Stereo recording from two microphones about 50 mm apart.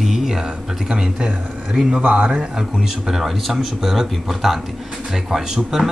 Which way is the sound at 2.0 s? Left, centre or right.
Right.